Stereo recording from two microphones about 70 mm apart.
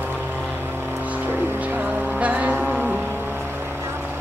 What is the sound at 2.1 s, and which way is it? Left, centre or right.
Vehicle, centre.